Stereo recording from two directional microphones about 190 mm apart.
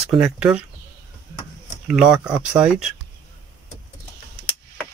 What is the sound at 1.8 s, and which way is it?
Speech, 5° right (ahead or behind).